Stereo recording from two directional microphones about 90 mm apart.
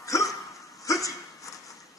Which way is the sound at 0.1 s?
35° left (ahead or behind).